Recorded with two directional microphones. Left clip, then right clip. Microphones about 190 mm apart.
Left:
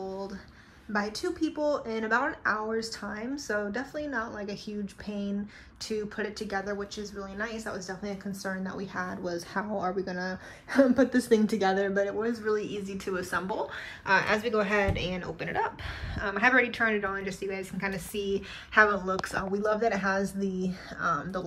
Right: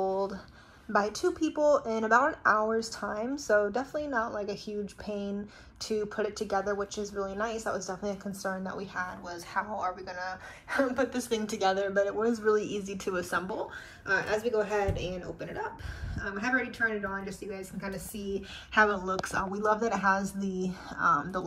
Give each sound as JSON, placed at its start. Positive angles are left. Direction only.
{"t": 0.0, "sound": "a sound", "side_deg": 0}
{"t": 0.9, "sound": "a woman's voice", "side_deg": 0}
{"t": 9.2, "sound": "a woman's voice", "side_deg": 35}
{"t": 11.0, "sound": "a woman's voice", "side_deg": 30}